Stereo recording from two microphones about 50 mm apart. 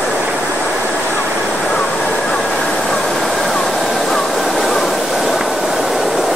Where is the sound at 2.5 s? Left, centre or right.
Centre.